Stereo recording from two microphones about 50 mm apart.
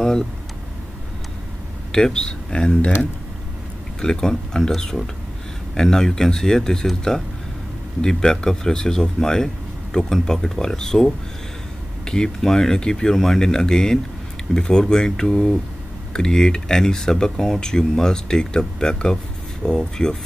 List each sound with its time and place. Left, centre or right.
1.9 s speech: centre
2.5 s speech: left
4.0 s speech: centre